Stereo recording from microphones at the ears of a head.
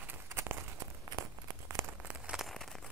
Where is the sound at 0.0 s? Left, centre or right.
Right.